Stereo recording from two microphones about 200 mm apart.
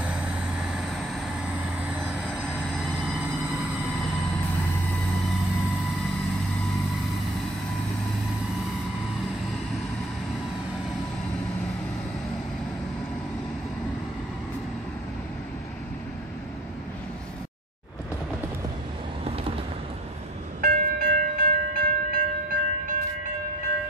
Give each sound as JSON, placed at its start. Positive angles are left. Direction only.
{"t": 0.0, "sound": "vehicle", "side_deg": -5}
{"t": 2.2, "sound": "train", "side_deg": 0}
{"t": 20.6, "sound": "train", "side_deg": -45}